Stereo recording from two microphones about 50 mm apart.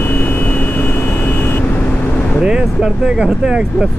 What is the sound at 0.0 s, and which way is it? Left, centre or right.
Vehicle, left.